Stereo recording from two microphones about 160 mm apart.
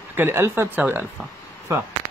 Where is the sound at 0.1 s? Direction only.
15° right (ahead or behind).